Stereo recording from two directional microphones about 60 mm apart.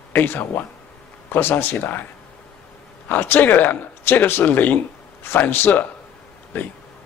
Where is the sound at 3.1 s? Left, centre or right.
Left.